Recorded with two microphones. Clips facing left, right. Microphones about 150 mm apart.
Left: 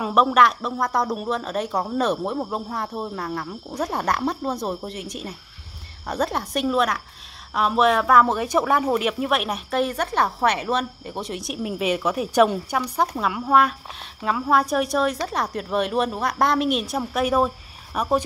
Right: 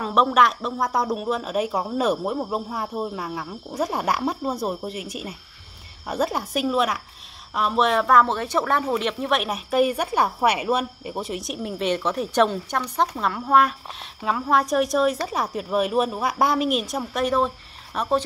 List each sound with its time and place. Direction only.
0.0 s speech: 5° left (ahead or behind)